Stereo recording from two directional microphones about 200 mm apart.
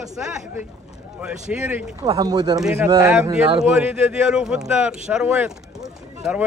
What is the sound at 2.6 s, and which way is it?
Speech, 5° right (ahead or behind).